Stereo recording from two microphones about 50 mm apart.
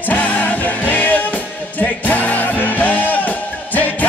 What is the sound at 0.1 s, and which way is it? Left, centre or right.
Music, left.